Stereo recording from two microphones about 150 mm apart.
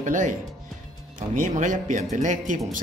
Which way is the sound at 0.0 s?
60° right (ahead or behind).